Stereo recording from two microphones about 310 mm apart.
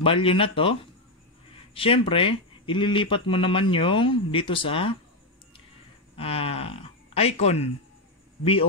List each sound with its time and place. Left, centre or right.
0.0 s speech: centre
6.1 s speech: centre